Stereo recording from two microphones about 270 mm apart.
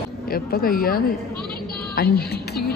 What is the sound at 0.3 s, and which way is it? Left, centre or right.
A woman's voice, left.